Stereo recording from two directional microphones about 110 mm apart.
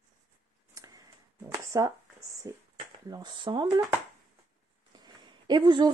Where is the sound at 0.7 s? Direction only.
35° right (ahead or behind).